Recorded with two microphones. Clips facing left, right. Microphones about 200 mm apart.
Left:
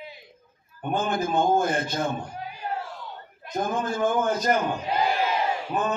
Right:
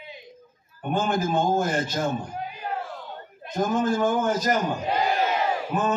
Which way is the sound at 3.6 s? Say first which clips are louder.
Right 3 dB; 55° left (ahead or behind).